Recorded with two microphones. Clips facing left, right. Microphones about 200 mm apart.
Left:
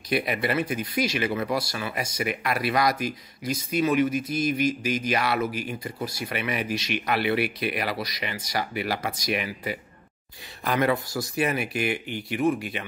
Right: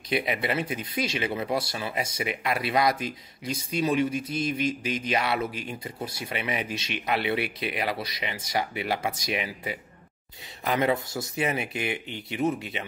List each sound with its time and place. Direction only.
0.1 s speech: 20° right (ahead or behind)